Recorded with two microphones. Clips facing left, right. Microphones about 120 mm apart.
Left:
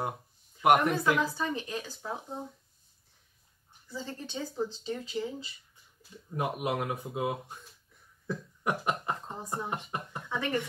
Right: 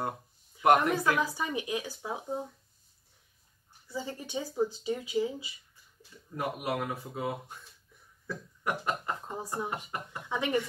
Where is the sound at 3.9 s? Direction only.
10° right (ahead or behind).